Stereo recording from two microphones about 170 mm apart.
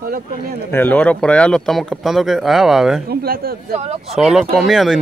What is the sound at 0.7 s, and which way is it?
Speech, 10° left (ahead or behind).